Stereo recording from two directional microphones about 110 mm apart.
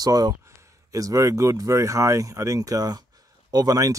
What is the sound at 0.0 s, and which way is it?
Speech, 35° right (ahead or behind).